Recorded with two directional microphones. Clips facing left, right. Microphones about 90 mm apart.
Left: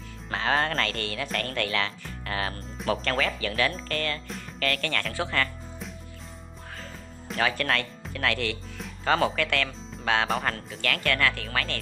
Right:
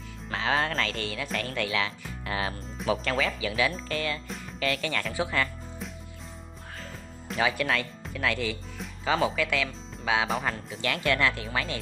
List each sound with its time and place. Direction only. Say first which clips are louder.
0.3 s speech: left 1 dB; centre (ahead or behind)
7.4 s speech: even; 10° right (ahead or behind)
10.8 s speech: right 1 dB; 15° right (ahead or behind)